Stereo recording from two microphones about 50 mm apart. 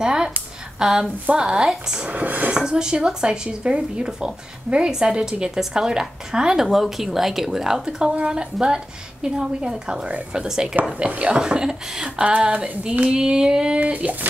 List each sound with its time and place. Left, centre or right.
0.0 s a sound: centre
0.7 s speech: centre
2.0 s dishes: right
2.5 s speech: centre
11.1 s female singing: right
11.3 s speech: centre
12.3 s female singing: right
13.7 s dishes: right